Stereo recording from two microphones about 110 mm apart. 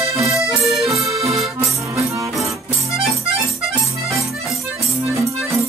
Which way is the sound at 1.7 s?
25° right (ahead or behind).